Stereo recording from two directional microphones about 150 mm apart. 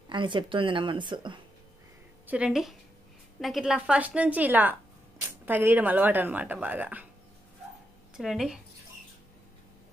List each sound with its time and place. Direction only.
0.1 s a woman's voice: 35° right (ahead or behind)
2.2 s speech: 5° right (ahead or behind)
8.2 s speech: centre (ahead or behind)